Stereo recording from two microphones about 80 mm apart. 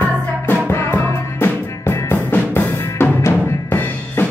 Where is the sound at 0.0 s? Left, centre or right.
Left.